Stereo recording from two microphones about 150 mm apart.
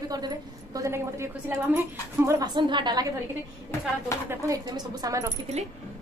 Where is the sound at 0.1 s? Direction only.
25° right (ahead or behind).